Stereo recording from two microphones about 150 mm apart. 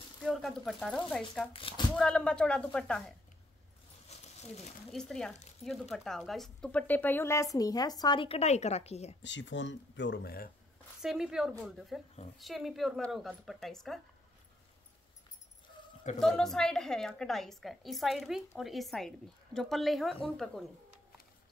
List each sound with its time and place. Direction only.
0.2 s a woman's voice: centre (ahead or behind)
1.5 s a woman's voice: 35° left (ahead or behind)
2.0 s speech: 5° left (ahead or behind)
4.9 s a woman's voice: 5° left (ahead or behind); by 9.1 s 45° left (ahead or behind)
10.1 s speech: 85° left
11.0 s a woman's voice: 5° right (ahead or behind)
16.2 s a woman's voice: centre (ahead or behind)